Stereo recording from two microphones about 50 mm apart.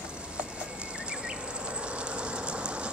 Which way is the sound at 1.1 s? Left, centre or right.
Centre.